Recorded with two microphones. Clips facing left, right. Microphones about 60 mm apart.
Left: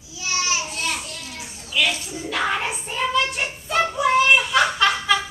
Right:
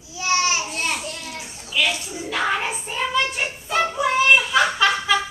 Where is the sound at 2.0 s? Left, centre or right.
Centre.